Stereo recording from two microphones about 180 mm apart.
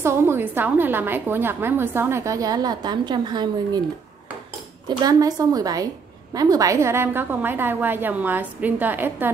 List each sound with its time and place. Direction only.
0.0 s a woman's voice: 15° right (ahead or behind)
4.8 s a woman's voice: 20° right (ahead or behind)